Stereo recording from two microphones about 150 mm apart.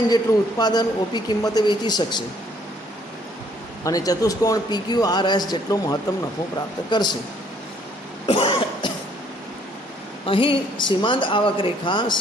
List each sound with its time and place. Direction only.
0.1 s a man's voice: 25° left (ahead or behind)
3.8 s a man's voice: 25° left (ahead or behind)
8.3 s cough: 35° left (ahead or behind)
10.2 s speech: 35° left (ahead or behind)